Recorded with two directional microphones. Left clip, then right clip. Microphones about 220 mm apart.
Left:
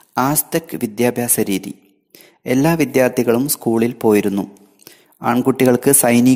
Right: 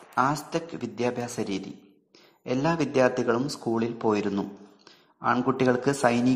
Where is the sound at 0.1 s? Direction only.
50° left (ahead or behind).